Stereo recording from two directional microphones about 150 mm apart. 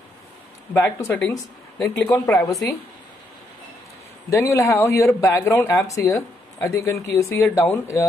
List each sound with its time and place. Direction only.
0.7 s speech: 10° left (ahead or behind)
4.3 s speech: 20° left (ahead or behind)